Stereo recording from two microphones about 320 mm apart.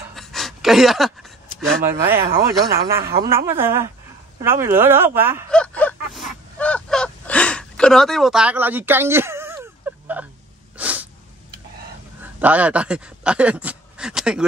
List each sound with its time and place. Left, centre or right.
0.1 s a sound: centre
1.6 s speech: centre
3.0 s speech: right
3.3 s speech: centre
4.4 s a sound: centre
10.8 s sneeze: centre
12.2 s speech: centre